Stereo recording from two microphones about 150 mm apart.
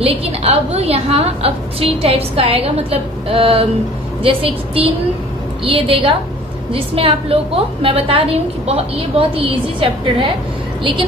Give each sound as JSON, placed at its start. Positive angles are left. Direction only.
{"t": 0.0, "sound": "a woman's voice", "side_deg": -40}